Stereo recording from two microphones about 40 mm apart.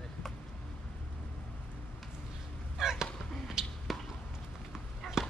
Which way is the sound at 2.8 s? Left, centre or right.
Centre.